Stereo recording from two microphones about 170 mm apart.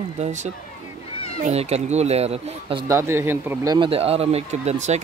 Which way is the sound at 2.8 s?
15° right (ahead or behind).